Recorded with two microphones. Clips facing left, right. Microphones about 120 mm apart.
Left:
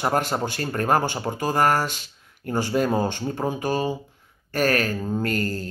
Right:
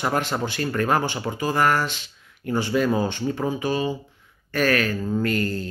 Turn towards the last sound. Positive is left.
turn(degrees=40)  # may be behind; listen again after turning